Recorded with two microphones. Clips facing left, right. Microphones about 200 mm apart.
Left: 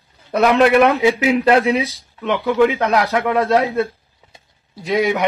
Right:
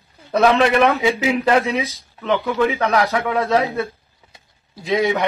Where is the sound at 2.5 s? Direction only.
15° left (ahead or behind).